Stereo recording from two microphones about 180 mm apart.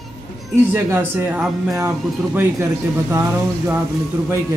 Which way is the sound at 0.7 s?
10° right (ahead or behind).